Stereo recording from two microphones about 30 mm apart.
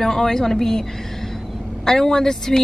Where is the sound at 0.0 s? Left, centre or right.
Centre.